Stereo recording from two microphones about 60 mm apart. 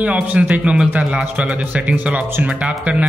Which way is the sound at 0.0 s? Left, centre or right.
Right.